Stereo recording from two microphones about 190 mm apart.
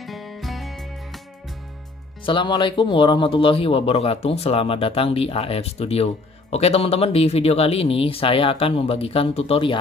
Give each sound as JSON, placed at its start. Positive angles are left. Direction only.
{"t": 0.0, "sound": "music", "side_deg": 0}
{"t": 2.2, "sound": "speech", "side_deg": 25}